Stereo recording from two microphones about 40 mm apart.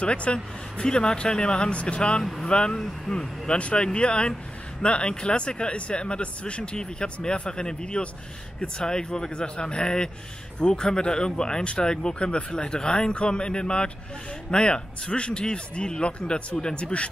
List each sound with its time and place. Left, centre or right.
0.0 s speech: left
2.2 s speech: centre
2.5 s speech: left